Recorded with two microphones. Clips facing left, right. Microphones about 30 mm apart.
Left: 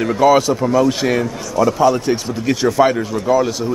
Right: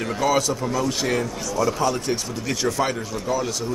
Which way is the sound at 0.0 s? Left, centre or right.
Centre.